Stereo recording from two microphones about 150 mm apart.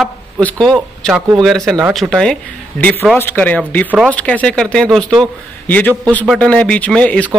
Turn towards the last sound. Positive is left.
turn(degrees=10)  # may be behind; listen again after turning